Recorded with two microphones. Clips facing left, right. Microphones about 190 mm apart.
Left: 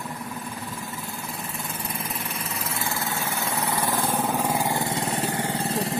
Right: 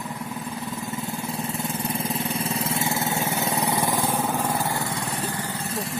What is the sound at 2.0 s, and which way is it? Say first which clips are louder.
Vehicle: right 6 dB; 30° right (ahead or behind).